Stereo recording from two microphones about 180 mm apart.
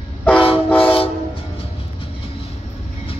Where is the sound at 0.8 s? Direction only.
30° left (ahead or behind).